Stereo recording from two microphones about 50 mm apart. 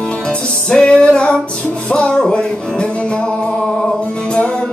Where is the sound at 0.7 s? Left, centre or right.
Centre.